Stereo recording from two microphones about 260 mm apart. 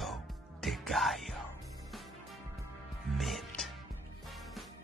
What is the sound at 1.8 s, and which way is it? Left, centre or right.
Music, centre.